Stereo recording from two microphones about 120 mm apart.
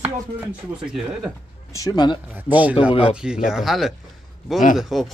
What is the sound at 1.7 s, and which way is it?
Speech, 30° left (ahead or behind).